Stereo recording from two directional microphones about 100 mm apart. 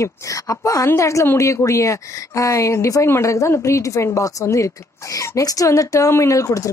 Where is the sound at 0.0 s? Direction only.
30° left (ahead or behind).